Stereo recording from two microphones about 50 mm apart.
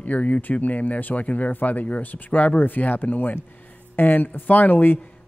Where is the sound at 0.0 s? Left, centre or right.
Left.